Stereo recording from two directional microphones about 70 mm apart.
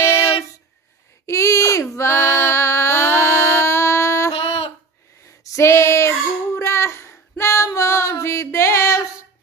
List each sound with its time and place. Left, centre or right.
0.0 s a sound: left
1.2 s female singing: left
5.4 s female singing: left
8.2 s music: left